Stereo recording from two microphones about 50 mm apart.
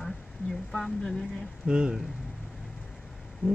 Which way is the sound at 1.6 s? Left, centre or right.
Centre.